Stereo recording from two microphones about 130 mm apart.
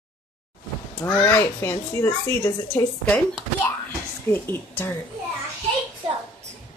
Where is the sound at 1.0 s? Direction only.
15° left (ahead or behind).